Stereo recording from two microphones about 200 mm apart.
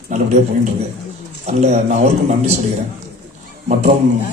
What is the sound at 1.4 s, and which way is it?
A man's voice, 35° right (ahead or behind).